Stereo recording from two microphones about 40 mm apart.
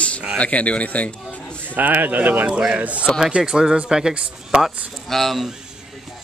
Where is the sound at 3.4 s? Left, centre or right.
Centre.